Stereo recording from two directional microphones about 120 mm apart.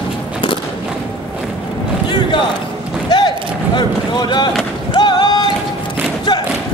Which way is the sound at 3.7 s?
40° left (ahead or behind).